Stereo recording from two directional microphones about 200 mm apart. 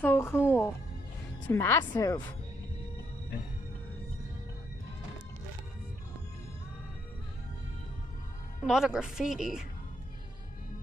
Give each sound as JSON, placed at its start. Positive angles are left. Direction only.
{"t": 0.0, "sound": "a woman's voice", "side_deg": 10}
{"t": 0.5, "sound": "music", "side_deg": 15}
{"t": 1.5, "sound": "speech", "side_deg": 10}
{"t": 8.6, "sound": "a woman's voice", "side_deg": 0}